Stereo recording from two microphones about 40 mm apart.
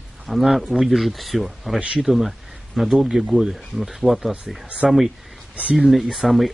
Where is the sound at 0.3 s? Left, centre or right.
Centre.